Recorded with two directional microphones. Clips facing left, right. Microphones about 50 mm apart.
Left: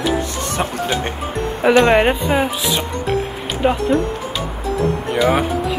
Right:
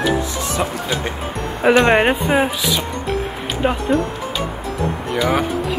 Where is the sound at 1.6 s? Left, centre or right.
Centre.